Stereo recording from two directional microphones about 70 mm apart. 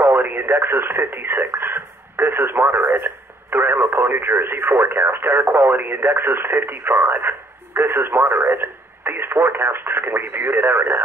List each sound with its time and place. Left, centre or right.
0.0 s speech: right